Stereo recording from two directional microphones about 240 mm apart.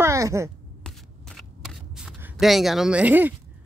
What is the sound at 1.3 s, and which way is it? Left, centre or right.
Shuffling cards, centre.